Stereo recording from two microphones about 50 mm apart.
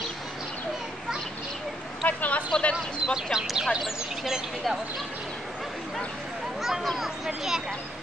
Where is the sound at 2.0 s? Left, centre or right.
Left.